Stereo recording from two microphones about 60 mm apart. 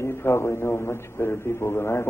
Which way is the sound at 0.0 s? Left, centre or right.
Left.